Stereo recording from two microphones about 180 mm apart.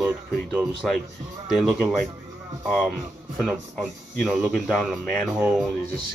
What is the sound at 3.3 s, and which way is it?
Speech, centre (ahead or behind).